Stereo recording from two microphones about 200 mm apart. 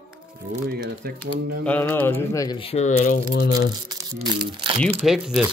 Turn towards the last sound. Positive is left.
turn(degrees=0)  # may be behind; listen again after turning